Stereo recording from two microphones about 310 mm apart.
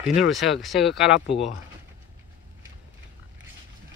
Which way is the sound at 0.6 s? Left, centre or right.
Centre.